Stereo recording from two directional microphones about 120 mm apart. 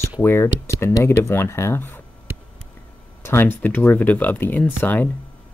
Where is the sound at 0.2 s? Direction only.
20° left (ahead or behind).